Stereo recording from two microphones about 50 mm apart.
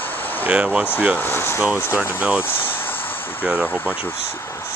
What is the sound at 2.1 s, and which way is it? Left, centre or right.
Speech, right.